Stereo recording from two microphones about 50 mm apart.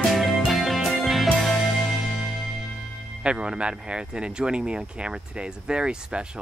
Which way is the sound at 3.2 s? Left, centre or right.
Centre.